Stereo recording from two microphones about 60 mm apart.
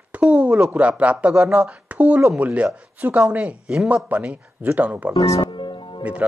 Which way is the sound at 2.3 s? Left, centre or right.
Right.